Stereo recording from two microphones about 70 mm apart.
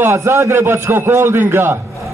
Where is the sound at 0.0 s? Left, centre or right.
Right.